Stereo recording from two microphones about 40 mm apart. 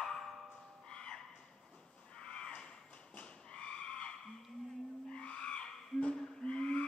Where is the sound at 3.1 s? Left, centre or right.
Left.